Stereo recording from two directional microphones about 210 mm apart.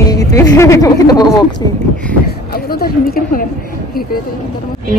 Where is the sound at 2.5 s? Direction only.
45° left (ahead or behind).